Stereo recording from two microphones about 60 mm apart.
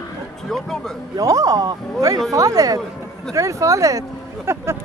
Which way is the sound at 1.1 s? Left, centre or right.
Right.